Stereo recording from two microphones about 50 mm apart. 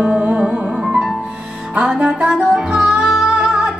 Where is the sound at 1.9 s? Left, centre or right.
Centre.